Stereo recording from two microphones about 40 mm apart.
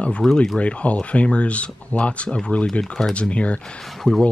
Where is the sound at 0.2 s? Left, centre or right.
Centre.